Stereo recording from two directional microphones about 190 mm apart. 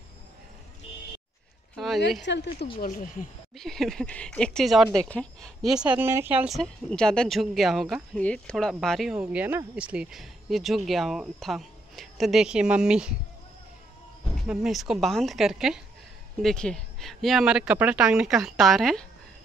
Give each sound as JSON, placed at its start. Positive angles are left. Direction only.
{"t": 2.2, "sound": "speech", "side_deg": 65}
{"t": 2.8, "sound": "speech", "side_deg": 45}
{"t": 3.5, "sound": "speech", "side_deg": 0}
{"t": 14.4, "sound": "speech", "side_deg": 0}